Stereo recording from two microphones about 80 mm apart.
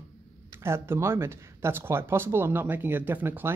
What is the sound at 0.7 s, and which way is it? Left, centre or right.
Speech, right.